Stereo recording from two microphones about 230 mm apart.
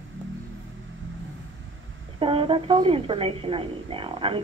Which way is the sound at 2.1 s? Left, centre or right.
Right.